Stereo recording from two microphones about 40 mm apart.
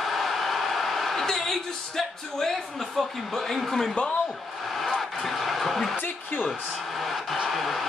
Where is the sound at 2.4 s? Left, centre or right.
Centre.